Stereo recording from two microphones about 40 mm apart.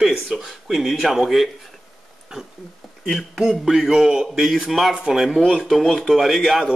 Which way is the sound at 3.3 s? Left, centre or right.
Centre.